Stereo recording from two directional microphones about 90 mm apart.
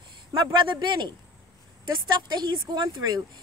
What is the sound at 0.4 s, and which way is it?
Speech, 60° right (ahead or behind).